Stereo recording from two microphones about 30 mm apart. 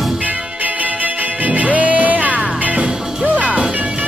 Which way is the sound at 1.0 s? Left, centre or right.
Right.